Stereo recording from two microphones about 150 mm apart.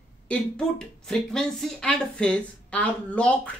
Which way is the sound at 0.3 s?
5° left (ahead or behind).